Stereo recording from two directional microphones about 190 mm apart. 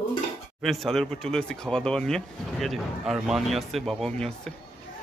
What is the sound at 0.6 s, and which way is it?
Speech, centre (ahead or behind).